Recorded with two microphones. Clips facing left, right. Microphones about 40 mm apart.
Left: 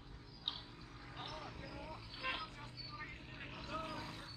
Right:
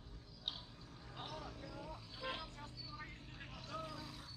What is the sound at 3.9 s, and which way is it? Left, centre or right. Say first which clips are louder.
Vehicle: left 3 dB; left.